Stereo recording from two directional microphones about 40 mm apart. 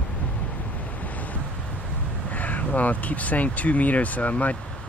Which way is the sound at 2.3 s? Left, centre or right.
Left.